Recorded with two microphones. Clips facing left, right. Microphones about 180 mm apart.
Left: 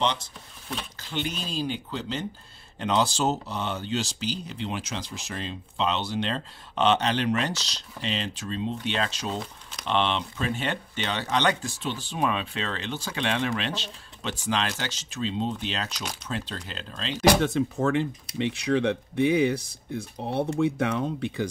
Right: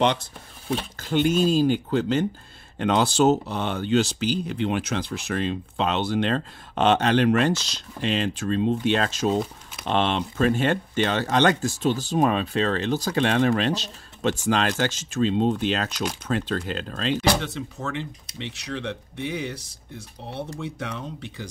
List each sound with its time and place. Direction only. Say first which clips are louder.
0.7 s speech: right 9 dB; 50° right (ahead or behind)
17.4 s speech: left 7 dB; 50° left (ahead or behind)